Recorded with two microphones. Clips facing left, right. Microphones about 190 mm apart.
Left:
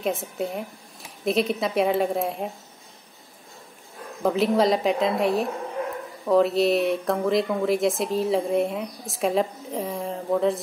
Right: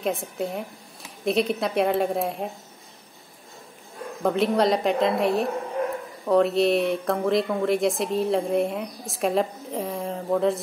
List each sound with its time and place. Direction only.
0.0 s speech: centre (ahead or behind)
4.2 s speech: centre (ahead or behind)